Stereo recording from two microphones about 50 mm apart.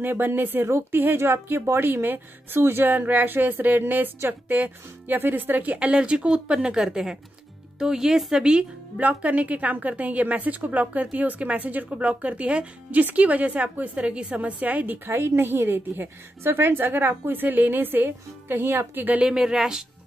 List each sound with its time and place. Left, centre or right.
0.0 s a woman's voice: right
5.8 s speech: right
9.0 s a woman's voice: right
15.0 s a woman's voice: right
19.1 s speech: centre